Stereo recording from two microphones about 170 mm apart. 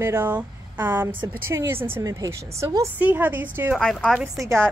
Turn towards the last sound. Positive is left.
turn(degrees=-15)  # may be behind; listen again after turning